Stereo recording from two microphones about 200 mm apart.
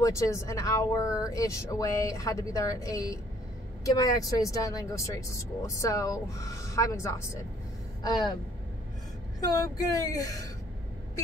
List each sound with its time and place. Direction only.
0.0 s speech: 15° left (ahead or behind)
9.4 s speech: 20° left (ahead or behind)